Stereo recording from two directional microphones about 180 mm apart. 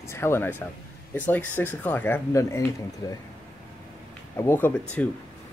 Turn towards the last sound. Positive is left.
turn(degrees=10)  # may be behind; listen again after turning